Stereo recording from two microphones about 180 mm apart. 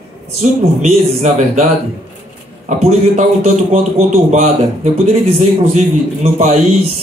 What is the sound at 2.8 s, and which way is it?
A man's voice, 40° right (ahead or behind).